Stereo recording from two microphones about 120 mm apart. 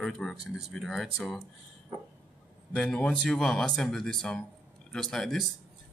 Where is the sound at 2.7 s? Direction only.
5° left (ahead or behind).